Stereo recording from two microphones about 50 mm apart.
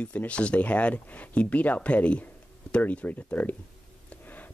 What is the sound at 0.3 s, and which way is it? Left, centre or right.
Speech, left.